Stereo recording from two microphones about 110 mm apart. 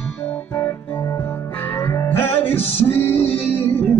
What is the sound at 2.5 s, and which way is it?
Music, 65° left (ahead or behind).